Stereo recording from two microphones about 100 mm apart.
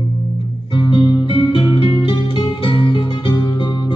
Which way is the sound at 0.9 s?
55° left (ahead or behind).